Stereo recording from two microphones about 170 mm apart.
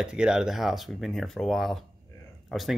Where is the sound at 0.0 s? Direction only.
5° right (ahead or behind).